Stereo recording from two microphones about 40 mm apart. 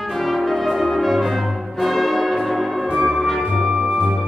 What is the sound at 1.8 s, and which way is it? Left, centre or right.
Change ringing, centre.